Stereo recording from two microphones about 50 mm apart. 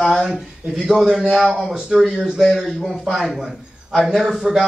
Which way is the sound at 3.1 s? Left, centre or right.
Centre.